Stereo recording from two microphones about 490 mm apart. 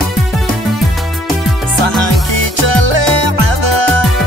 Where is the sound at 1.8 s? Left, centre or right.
Right.